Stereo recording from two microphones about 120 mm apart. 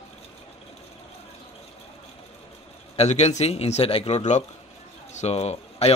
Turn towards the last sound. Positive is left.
turn(degrees=60)  # may be behind; listen again after turning